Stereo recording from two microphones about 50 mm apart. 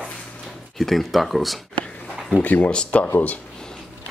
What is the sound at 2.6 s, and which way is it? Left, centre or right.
Speech, centre.